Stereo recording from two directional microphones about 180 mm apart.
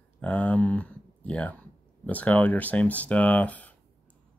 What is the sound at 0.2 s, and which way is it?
Speech, 5° left (ahead or behind).